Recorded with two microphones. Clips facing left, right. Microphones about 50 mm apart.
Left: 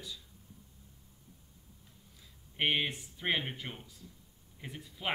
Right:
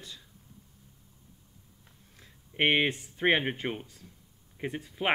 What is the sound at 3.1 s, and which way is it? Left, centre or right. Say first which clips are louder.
Speech: right 8 dB; right.